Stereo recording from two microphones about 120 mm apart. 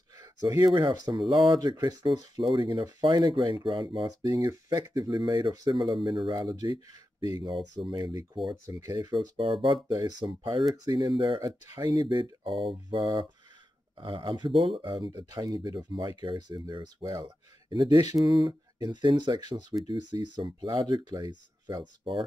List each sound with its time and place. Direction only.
0.1 s a sound: 30° right (ahead or behind)
0.7 s speech: 40° right (ahead or behind)
9.4 s speech: 45° right (ahead or behind)
9.8 s speech: 35° right (ahead or behind)
10.7 s speech: 30° right (ahead or behind)
11.1 s speech: 45° right (ahead or behind)
11.7 s speech: 30° right (ahead or behind)